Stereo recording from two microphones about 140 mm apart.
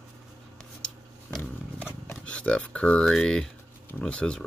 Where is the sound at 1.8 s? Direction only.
10° left (ahead or behind).